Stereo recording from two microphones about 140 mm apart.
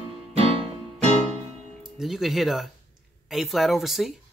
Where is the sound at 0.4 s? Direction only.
45° right (ahead or behind).